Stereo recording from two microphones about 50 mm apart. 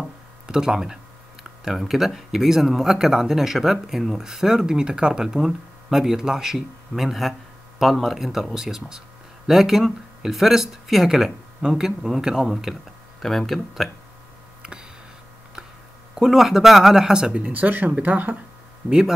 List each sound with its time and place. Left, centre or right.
0.5 s speech: centre
14.6 s tick: centre
16.2 s speech: centre
17.1 s speech: centre
17.5 s speech: right
18.9 s speech: centre